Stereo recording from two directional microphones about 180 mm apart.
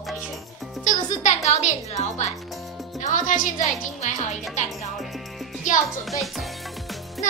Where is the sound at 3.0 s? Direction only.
45° left (ahead or behind).